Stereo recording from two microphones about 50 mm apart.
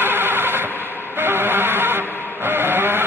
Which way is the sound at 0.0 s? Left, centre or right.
Right.